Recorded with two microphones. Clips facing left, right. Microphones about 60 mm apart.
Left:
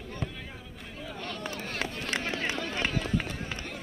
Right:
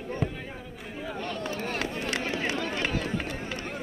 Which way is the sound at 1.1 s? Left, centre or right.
Right.